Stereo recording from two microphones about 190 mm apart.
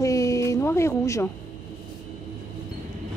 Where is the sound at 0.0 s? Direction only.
15° left (ahead or behind).